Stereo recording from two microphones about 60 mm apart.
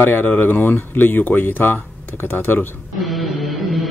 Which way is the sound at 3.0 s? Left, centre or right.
Centre.